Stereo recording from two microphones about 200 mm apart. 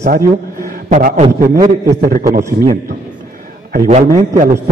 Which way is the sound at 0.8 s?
35° right (ahead or behind).